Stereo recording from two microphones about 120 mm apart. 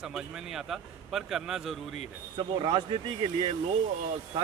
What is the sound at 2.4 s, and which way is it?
Speech, 45° right (ahead or behind).